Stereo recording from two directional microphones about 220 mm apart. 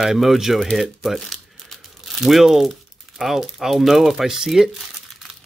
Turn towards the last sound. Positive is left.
turn(degrees=0)  # may be behind; listen again after turning